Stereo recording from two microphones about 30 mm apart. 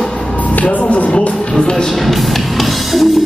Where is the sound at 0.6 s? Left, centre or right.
Left.